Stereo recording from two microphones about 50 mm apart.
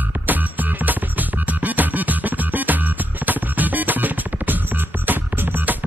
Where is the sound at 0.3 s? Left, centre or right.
Right.